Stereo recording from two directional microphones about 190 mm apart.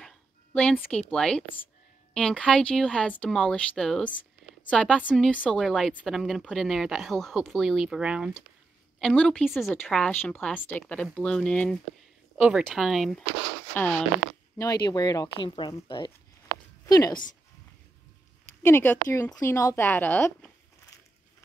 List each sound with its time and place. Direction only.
0.0 s a sound: 5° left (ahead or behind)
1.1 s a woman's voice: 5° left (ahead or behind)
14.6 s speech: 20° left (ahead or behind)
18.6 s speech: 10° left (ahead or behind)